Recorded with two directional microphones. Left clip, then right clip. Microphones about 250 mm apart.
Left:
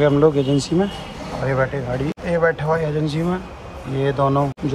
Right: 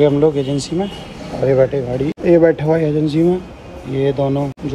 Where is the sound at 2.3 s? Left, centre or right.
Left.